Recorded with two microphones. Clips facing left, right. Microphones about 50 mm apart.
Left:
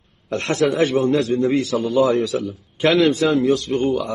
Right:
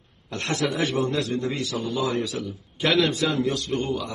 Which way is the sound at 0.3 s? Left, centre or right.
Left.